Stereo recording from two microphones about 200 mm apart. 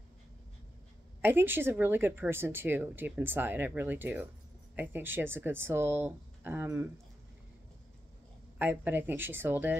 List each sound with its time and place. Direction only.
1.2 s a woman's voice: 10° right (ahead or behind)
8.5 s a woman's voice: 10° right (ahead or behind)